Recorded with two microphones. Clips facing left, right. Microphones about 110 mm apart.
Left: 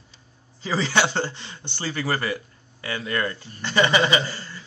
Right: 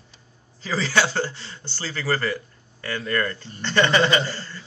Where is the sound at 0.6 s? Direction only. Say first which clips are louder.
Even; 20° left (ahead or behind).